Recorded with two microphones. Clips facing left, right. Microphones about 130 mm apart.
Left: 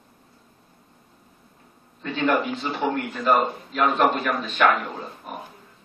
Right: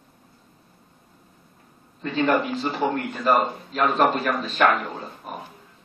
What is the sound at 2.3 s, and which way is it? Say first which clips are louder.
Speech: left 1 dB; centre (ahead or behind).